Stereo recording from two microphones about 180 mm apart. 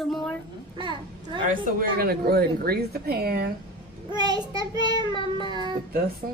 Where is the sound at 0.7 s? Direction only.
25° right (ahead or behind).